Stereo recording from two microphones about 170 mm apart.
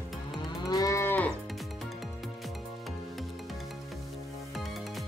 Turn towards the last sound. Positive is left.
turn(degrees=0)  # may be behind; listen again after turning